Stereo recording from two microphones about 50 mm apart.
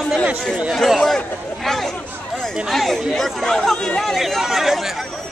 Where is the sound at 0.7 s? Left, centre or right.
Centre.